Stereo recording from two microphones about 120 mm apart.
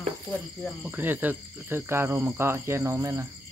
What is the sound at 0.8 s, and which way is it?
Cricket, 15° right (ahead or behind).